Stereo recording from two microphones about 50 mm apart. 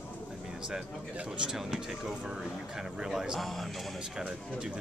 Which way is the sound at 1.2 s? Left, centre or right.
Centre.